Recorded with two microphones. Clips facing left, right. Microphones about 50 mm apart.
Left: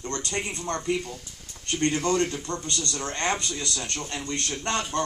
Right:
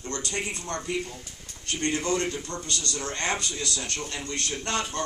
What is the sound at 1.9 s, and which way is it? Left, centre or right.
Speech, centre.